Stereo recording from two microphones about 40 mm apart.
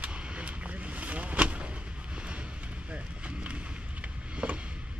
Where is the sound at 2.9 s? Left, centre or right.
Right.